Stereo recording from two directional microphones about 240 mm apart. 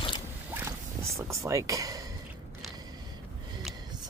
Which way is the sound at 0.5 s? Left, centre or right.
Centre.